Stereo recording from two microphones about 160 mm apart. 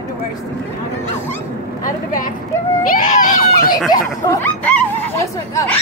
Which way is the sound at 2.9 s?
50° left (ahead or behind).